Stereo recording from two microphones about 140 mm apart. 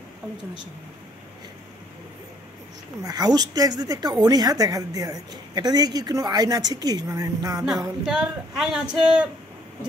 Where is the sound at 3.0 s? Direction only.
25° right (ahead or behind).